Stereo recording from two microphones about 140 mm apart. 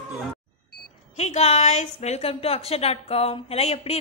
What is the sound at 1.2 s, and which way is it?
A woman's voice, 50° left (ahead or behind).